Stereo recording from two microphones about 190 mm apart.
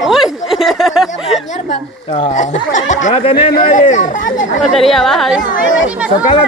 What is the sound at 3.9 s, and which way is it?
Speech, 40° left (ahead or behind).